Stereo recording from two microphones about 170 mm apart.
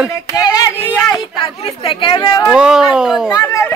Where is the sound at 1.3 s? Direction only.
30° left (ahead or behind).